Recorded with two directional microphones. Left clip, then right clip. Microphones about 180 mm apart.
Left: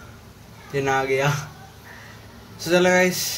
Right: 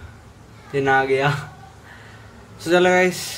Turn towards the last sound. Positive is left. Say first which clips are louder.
# right 1 dB
turn(degrees=-10)  # may be behind; listen again after turning